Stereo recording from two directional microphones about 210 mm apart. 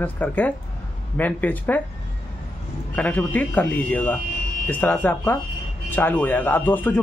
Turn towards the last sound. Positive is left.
turn(degrees=10)  # may be behind; listen again after turning